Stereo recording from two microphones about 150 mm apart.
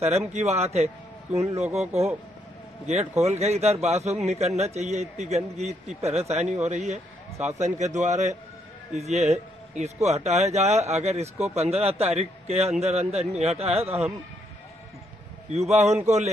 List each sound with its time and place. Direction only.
0.3 s speech: 45° right (ahead or behind)
15.5 s speech: 45° right (ahead or behind)